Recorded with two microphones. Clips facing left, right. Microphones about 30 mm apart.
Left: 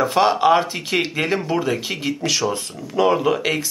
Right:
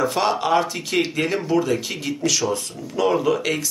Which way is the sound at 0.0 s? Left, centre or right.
Left.